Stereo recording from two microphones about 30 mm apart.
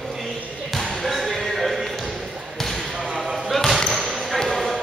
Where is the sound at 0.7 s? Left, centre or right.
Centre.